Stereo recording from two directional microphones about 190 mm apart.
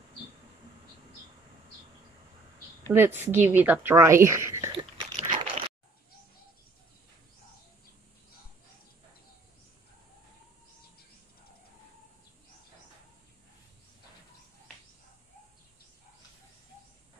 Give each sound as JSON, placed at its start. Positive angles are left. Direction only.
{"t": 2.9, "sound": "a woman's voice", "side_deg": -10}
{"t": 4.7, "sound": "biting", "side_deg": -35}